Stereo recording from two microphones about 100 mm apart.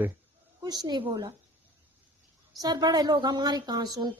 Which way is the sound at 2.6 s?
40° right (ahead or behind).